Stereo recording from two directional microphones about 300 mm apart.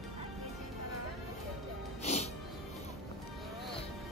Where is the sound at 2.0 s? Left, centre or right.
Left.